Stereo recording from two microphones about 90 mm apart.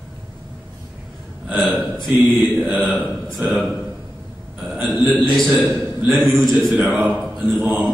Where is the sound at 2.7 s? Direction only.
Centre (ahead or behind).